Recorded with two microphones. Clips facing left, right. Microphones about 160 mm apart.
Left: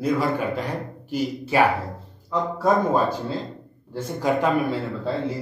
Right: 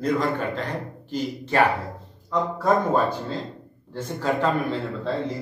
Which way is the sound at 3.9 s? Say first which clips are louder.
Left 2 dB; 10° left (ahead or behind).